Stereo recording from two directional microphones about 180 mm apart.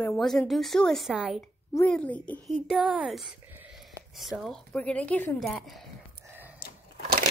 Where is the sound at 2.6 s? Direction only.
5° right (ahead or behind).